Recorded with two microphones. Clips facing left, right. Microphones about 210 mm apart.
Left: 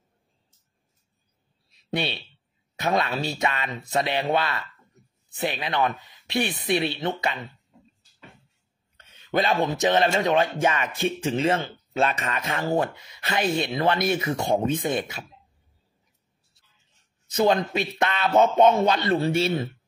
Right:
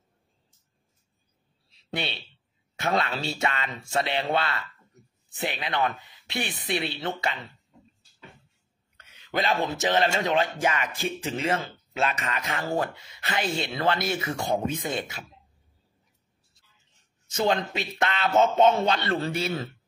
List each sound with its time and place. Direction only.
1.7 s a sound: 25° left (ahead or behind)
2.7 s speech: 20° left (ahead or behind)
8.9 s speech: 25° left (ahead or behind)
17.7 s speech: 20° left (ahead or behind)
19.3 s speech: 30° left (ahead or behind)